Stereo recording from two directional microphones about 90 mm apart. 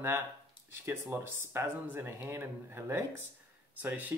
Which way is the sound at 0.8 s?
30° right (ahead or behind).